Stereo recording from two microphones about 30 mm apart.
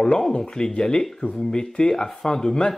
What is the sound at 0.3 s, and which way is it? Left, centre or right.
Speech, left.